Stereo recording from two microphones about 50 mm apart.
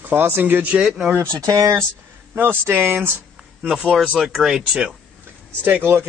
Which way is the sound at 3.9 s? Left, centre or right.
Centre.